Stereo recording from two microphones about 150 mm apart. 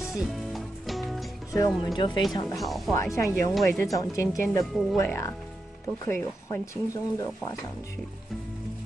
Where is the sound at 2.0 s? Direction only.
30° left (ahead or behind).